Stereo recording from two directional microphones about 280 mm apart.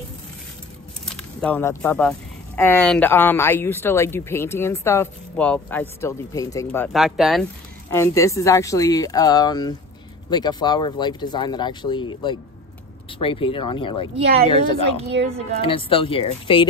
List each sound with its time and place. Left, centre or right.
1.0 s speech: centre
7.9 s speech: centre
13.2 s speech: centre
14.1 s a woman's voice: right
15.6 s speech: centre